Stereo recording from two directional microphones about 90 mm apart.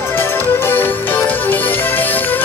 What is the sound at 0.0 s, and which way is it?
Music, 25° left (ahead or behind).